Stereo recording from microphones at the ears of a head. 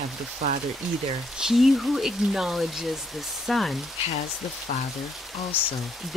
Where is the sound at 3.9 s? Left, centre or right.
Left.